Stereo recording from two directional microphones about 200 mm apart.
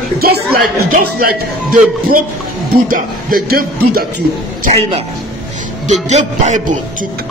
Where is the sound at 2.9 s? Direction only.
45° right (ahead or behind).